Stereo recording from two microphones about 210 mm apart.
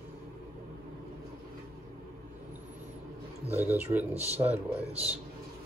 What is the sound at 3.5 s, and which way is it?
Speech, 10° right (ahead or behind).